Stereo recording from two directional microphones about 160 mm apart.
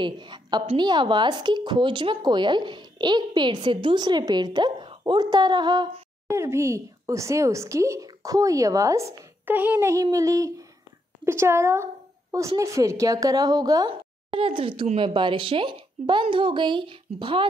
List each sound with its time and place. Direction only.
0.0 s a woman's voice: 30° right (ahead or behind)
6.2 s a woman's voice: 15° right (ahead or behind)
14.3 s a woman's voice: 35° right (ahead or behind)